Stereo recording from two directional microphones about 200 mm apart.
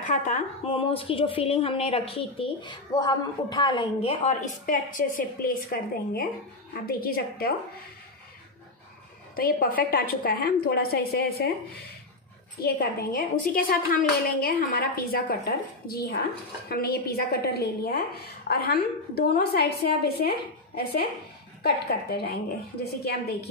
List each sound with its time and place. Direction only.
0.0 s a woman's voice: 40° left (ahead or behind)
9.3 s a woman's voice: 45° left (ahead or behind)
12.6 s a woman's voice: 50° left (ahead or behind)